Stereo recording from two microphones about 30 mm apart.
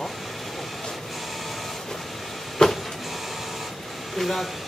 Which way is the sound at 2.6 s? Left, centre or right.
Left.